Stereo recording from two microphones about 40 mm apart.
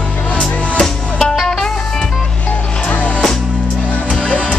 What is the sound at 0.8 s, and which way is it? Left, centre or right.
Music, centre.